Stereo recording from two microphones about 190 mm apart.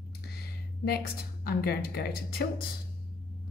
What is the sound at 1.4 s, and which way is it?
Speech, 55° left (ahead or behind).